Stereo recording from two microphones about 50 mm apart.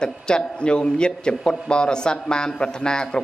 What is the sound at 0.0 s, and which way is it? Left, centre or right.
A man's voice, centre.